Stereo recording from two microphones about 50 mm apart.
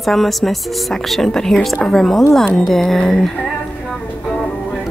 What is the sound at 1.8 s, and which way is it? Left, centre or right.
Speech, centre.